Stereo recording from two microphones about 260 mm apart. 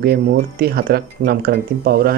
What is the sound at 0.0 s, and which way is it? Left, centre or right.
Speech, right.